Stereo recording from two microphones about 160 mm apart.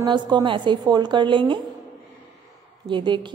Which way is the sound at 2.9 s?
30° right (ahead or behind).